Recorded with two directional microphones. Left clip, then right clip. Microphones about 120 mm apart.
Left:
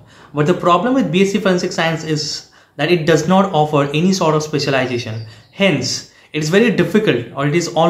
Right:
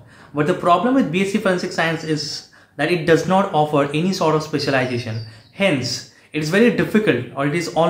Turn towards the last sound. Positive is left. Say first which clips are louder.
# left 3 dB
turn(degrees=10)  # may be behind; listen again after turning